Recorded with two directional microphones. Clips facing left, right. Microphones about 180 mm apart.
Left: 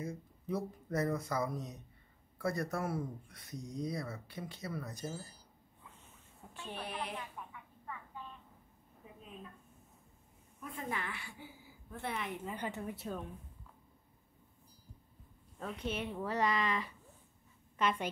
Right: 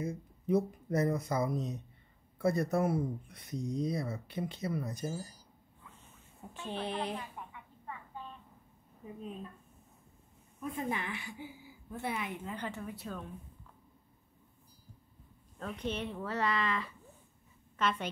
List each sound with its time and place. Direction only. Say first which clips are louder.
0.0 s speech: right 5 dB; 20° right (ahead or behind)
6.7 s speech: right 6 dB; 25° right (ahead or behind)
10.6 s a woman's voice: right 5 dB; 20° right (ahead or behind)
12.4 s speech: even; 15° left (ahead or behind)
15.6 s a woman's voice: right 2 dB; 5° left (ahead or behind)